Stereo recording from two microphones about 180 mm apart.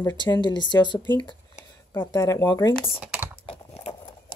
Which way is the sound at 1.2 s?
25° left (ahead or behind).